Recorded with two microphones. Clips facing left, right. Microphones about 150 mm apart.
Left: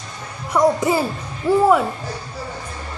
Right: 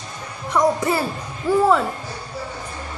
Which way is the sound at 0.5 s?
15° left (ahead or behind).